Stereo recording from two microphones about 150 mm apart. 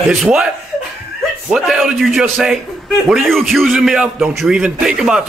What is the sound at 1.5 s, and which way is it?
A man's voice, centre (ahead or behind).